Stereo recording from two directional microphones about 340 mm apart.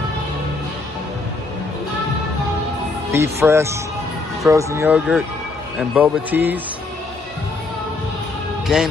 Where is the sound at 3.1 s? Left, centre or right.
Centre.